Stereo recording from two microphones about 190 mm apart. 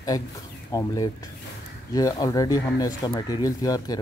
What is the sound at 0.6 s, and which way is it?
Speech, 20° left (ahead or behind).